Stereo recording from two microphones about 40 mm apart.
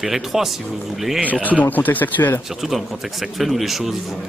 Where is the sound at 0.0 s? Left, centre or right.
Centre.